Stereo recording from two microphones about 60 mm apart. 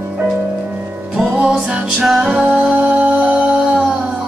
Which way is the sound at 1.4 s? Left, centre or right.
Centre.